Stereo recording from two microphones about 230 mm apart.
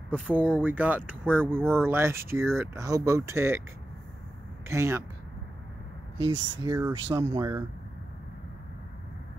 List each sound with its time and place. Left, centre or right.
0.1 s speech: centre
4.6 s speech: centre
6.3 s speech: centre